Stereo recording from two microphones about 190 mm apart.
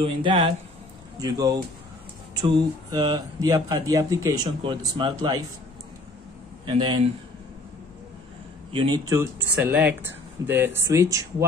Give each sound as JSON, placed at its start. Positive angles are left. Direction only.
{"t": 0.0, "sound": "speech", "side_deg": -25}
{"t": 6.6, "sound": "speech", "side_deg": -25}
{"t": 8.7, "sound": "speech", "side_deg": -20}